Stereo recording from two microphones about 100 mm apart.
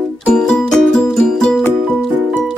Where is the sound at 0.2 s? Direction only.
10° left (ahead or behind).